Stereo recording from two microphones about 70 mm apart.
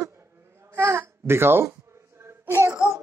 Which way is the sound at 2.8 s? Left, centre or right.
Left.